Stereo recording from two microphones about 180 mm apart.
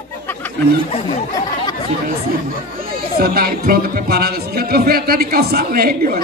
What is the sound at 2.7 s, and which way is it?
Speech, 55° right (ahead or behind).